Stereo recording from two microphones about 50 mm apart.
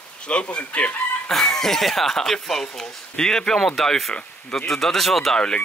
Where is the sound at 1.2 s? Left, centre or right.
Centre.